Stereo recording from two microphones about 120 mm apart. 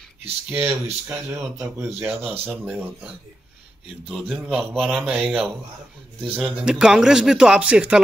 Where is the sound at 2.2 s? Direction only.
55° right (ahead or behind).